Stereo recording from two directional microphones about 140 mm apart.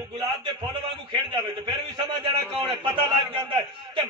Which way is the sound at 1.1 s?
35° right (ahead or behind).